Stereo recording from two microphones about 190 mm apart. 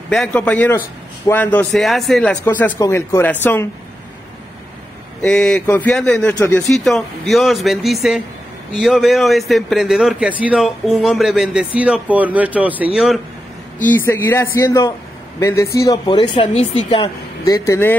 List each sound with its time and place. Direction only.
0.1 s a man's voice: 5° left (ahead or behind)
5.2 s a man's voice: 5° left (ahead or behind)
13.7 s a man's voice: 10° left (ahead or behind); by 17.1 s 30° left (ahead or behind)
17.5 s a man's voice: 15° left (ahead or behind)